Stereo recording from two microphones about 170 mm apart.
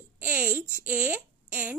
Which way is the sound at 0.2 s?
10° right (ahead or behind).